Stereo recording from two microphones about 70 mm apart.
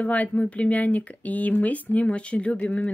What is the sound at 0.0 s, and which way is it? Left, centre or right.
Speech, left.